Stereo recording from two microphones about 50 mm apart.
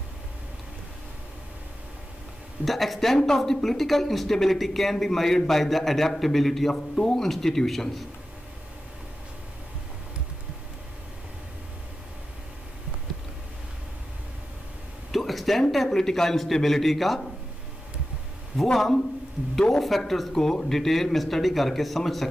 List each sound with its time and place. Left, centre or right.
2.6 s speech: centre
15.0 s a sound: centre
15.7 s speech: centre
18.6 s speech: centre